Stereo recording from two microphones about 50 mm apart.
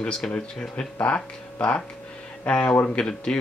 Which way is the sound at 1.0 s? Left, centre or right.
Left.